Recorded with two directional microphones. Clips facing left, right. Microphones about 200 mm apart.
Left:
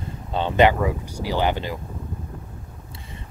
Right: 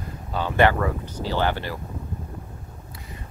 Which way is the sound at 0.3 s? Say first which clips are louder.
Left 2 dB; 25° left (ahead or behind).